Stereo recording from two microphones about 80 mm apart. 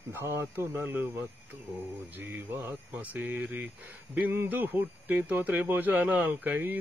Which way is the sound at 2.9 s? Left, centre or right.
Right.